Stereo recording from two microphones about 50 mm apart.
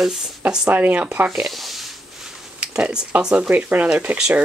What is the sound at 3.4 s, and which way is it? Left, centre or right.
Speech, right.